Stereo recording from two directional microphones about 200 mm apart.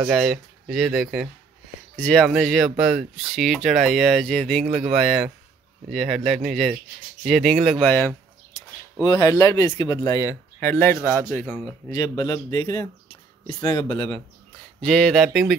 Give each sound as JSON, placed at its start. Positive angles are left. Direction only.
{"t": 0.0, "sound": "speech", "side_deg": 0}
{"t": 9.0, "sound": "speech", "side_deg": 20}
{"t": 11.9, "sound": "speech", "side_deg": 20}
{"t": 14.8, "sound": "speech", "side_deg": 5}